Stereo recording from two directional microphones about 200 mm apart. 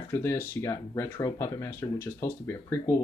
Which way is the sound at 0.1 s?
15° left (ahead or behind).